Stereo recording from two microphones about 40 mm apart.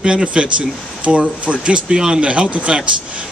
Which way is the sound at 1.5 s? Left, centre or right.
Centre.